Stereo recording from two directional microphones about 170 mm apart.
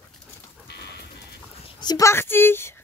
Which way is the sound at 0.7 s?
80° left.